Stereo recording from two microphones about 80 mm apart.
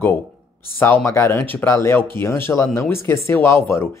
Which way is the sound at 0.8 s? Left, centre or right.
Left.